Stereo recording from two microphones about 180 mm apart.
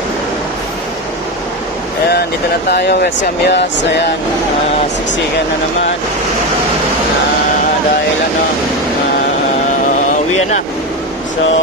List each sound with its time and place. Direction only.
2.7 s speech: 65° left (ahead or behind)